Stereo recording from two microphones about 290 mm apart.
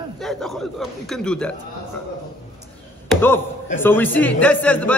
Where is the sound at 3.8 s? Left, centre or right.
Centre.